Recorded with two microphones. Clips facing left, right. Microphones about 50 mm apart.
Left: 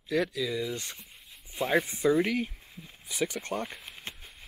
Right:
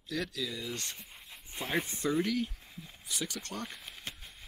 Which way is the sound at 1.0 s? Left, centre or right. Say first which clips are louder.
Right 1 dB; centre.